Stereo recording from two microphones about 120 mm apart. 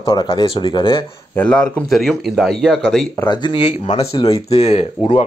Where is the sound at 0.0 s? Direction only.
35° left (ahead or behind).